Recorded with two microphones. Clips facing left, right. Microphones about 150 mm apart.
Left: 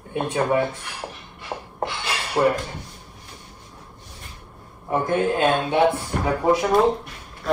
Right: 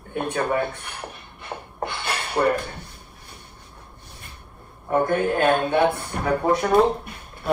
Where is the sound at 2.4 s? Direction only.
5° left (ahead or behind).